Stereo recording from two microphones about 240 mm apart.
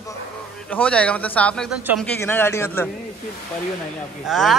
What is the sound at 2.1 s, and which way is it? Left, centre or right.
Speech, centre.